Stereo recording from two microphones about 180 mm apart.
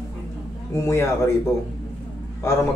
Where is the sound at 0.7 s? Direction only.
15° left (ahead or behind).